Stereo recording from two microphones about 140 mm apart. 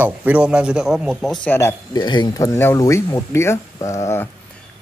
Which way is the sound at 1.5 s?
15° left (ahead or behind).